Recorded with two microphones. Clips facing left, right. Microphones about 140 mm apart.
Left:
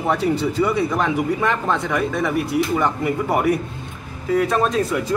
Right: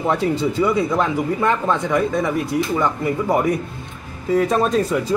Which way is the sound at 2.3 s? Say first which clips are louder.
Even; 5° left (ahead or behind).